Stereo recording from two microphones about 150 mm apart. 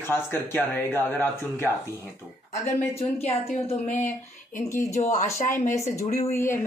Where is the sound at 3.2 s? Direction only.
45° left (ahead or behind).